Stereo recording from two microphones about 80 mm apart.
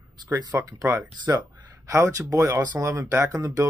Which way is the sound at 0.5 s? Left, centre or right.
Right.